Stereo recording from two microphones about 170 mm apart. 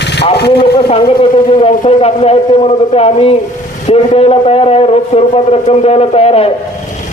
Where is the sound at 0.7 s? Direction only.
30° left (ahead or behind).